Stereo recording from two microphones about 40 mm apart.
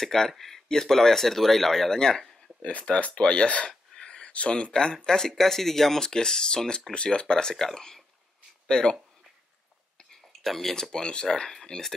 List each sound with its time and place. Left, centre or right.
0.0 s speech: centre
2.6 s speech: left
3.6 s a sound: centre
4.3 s speech: left
10.4 s speech: centre